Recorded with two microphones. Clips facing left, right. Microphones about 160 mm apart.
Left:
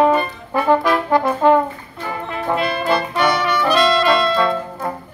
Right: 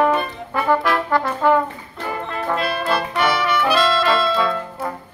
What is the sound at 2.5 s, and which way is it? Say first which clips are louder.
Brass instrument: left 3 dB; centre (ahead or behind).